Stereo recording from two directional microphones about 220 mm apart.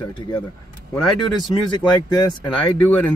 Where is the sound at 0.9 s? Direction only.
Centre (ahead or behind).